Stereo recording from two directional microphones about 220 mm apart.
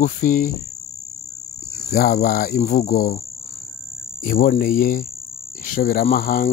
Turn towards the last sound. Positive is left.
turn(degrees=40)  # may be behind; listen again after turning